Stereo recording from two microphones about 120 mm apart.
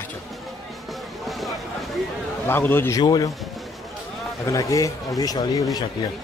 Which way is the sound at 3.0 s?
35° left (ahead or behind).